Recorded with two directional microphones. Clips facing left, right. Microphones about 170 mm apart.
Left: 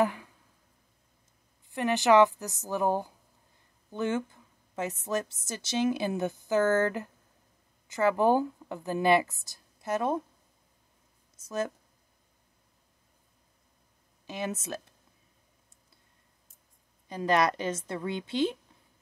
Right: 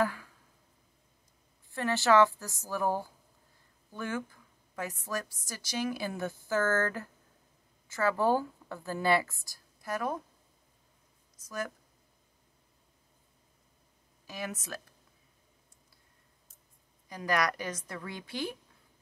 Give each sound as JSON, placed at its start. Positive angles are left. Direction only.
{"t": 0.0, "sound": "a sound", "side_deg": 20}
{"t": 1.7, "sound": "a woman's voice", "side_deg": 15}
{"t": 11.3, "sound": "speech", "side_deg": 25}
{"t": 14.2, "sound": "speech", "side_deg": 25}
{"t": 17.1, "sound": "a woman's voice", "side_deg": 25}